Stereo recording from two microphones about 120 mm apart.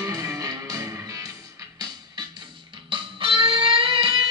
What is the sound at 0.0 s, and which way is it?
Music, 30° right (ahead or behind).